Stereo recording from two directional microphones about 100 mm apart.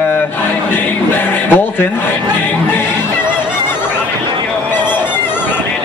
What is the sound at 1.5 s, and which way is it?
Speech, 20° left (ahead or behind).